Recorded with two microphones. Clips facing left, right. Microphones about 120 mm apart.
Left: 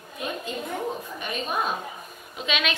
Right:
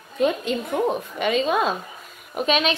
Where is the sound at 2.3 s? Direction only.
40° right (ahead or behind).